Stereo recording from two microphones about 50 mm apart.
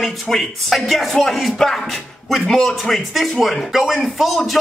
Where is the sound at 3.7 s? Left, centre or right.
Centre.